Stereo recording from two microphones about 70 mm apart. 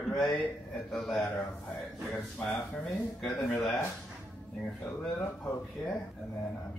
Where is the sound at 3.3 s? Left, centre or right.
Centre.